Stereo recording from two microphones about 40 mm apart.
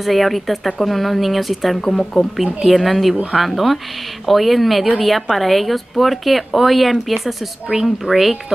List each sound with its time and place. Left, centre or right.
0.0 s a woman's voice: centre
1.8 s speech: centre
2.3 s a woman's voice: centre